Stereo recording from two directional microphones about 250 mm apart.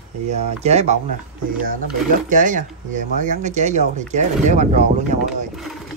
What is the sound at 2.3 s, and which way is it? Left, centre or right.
Speech, right.